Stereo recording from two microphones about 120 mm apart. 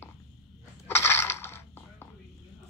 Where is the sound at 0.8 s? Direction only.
20° left (ahead or behind).